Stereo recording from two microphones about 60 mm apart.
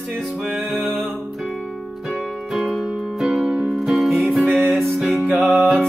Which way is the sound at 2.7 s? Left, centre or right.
Centre.